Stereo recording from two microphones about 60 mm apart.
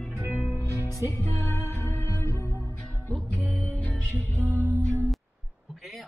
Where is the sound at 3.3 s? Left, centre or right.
Right.